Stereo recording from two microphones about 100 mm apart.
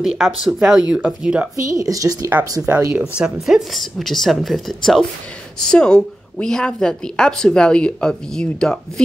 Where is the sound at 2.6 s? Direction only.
15° right (ahead or behind).